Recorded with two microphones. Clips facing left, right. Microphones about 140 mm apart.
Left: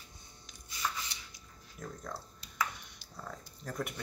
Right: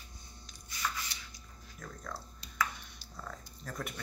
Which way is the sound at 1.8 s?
25° left (ahead or behind).